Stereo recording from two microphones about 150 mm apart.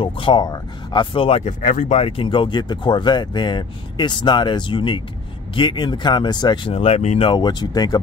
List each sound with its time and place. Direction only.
0.0 s speech: 35° left (ahead or behind)
1.6 s speech: 60° left (ahead or behind)
7.2 s speech: 30° left (ahead or behind)